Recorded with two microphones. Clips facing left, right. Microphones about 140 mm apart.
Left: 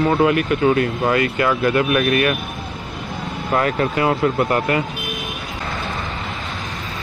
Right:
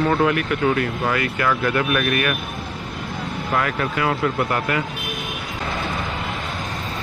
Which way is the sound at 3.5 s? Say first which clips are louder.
Left 4 dB; 30° left (ahead or behind).